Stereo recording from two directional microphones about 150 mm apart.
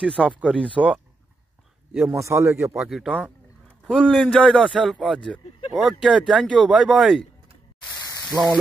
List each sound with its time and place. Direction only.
0.2 s speech: 10° right (ahead or behind)
2.2 s a man's voice: 20° right (ahead or behind)
2.5 s speech: 5° right (ahead or behind)